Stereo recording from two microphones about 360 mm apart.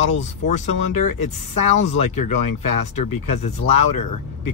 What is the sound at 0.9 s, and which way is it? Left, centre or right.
Speech, left.